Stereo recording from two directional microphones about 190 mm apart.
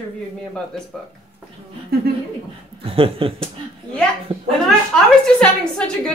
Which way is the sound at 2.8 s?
30° right (ahead or behind).